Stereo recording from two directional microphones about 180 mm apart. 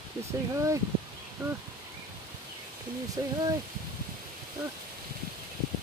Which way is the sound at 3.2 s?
20° right (ahead or behind).